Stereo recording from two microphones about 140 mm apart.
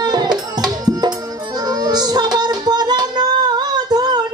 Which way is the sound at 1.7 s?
30° right (ahead or behind).